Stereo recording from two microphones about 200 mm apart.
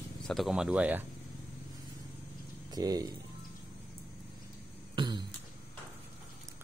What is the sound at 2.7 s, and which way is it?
Speech, 20° right (ahead or behind).